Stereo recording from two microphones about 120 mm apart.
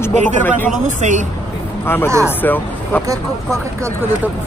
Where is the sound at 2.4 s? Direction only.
15° left (ahead or behind).